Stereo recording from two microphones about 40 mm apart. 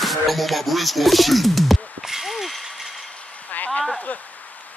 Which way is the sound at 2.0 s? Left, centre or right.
Centre.